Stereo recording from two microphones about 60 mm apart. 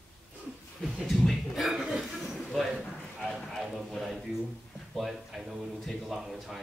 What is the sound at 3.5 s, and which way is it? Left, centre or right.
A man's voice, centre.